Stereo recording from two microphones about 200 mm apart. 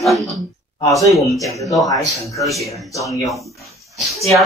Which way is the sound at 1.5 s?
15° left (ahead or behind).